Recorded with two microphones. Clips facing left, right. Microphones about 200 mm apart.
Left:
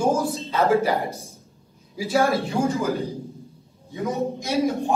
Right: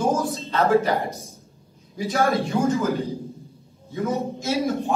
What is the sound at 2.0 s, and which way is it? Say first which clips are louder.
Speech: left 1 dB; 5° left (ahead or behind).